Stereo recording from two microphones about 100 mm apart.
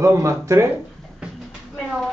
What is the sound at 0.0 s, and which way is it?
Speech, 30° right (ahead or behind).